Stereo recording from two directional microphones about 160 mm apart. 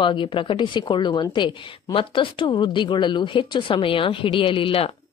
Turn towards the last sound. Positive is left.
turn(degrees=35)  # may be behind; listen again after turning